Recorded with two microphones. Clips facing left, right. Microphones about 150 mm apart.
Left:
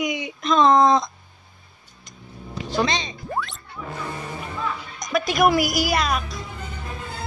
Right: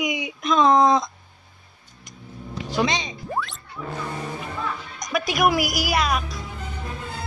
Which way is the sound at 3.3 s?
Centre (ahead or behind).